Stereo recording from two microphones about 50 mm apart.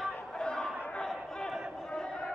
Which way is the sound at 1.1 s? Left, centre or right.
Centre.